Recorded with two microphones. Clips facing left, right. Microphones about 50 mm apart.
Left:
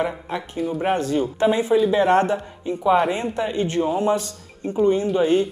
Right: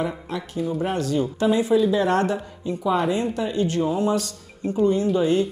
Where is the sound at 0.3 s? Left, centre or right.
Left.